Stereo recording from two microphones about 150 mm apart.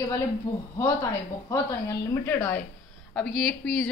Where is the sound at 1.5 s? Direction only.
15° left (ahead or behind).